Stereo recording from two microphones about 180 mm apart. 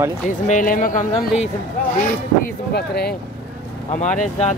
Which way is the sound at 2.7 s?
65° left (ahead or behind).